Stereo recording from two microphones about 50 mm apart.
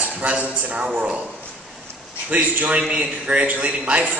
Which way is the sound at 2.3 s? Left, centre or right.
Right.